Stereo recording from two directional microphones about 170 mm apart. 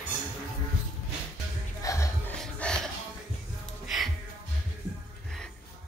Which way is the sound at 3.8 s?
Centre (ahead or behind).